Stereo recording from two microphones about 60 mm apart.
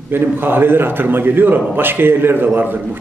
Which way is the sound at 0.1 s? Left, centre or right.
Right.